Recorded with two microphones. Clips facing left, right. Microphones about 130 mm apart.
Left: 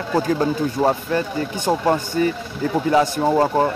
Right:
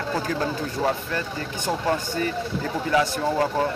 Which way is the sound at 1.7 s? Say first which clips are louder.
Left 6 dB; 35° left (ahead or behind).